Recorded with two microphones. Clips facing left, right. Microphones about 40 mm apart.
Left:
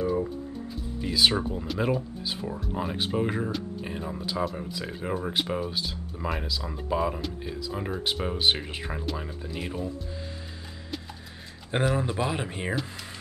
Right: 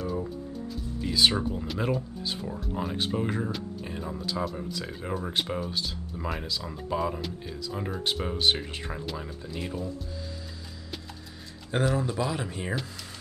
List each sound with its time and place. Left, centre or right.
0.0 s music: centre
1.0 s speech: centre
11.7 s speech: left